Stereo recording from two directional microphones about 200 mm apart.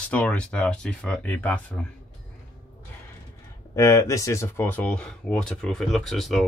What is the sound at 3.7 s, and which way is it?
Speech, 15° left (ahead or behind).